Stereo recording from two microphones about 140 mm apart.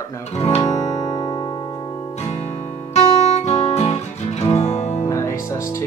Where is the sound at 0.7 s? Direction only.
55° left (ahead or behind).